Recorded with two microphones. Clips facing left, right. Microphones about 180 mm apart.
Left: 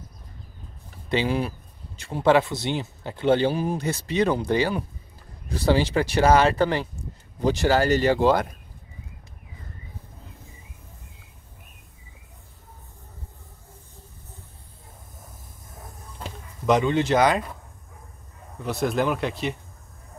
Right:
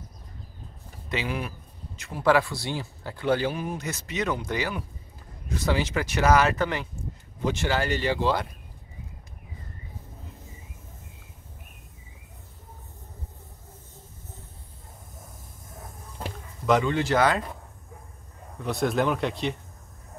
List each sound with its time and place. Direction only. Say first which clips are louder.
1.0 s speech: left 6 dB; 30° left (ahead or behind); by 8.5 s 45° left (ahead or behind)
16.6 s speech: left 2 dB; 20° left (ahead or behind)
18.6 s speech: left 1 dB; centre (ahead or behind)